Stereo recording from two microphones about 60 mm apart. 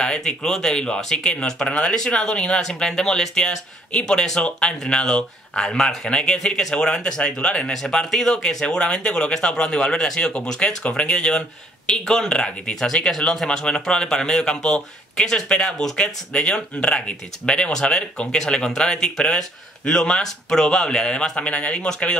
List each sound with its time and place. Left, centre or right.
0.0 s speech: centre